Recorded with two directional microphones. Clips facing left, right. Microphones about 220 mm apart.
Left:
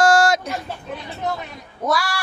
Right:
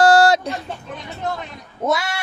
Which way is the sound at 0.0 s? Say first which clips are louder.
Right 3 dB; 35° right (ahead or behind).